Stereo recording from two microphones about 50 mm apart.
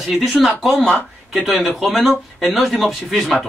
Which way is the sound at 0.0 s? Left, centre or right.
Centre.